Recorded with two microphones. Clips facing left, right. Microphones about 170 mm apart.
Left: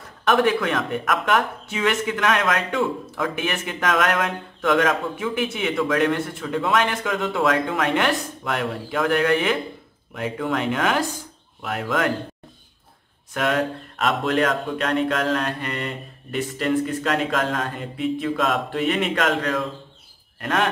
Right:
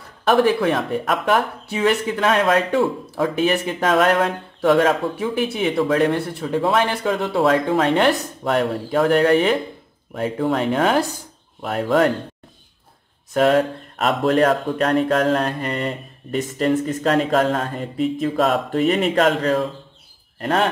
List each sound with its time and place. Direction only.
0.2 s speech: 35° right (ahead or behind)
13.3 s speech: 35° right (ahead or behind)